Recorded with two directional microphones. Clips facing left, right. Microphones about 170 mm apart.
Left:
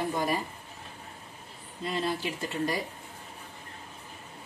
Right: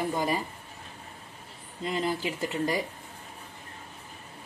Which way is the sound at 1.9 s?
15° right (ahead or behind).